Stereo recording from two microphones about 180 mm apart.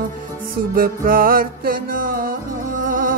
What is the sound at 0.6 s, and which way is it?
Music, 55° right (ahead or behind).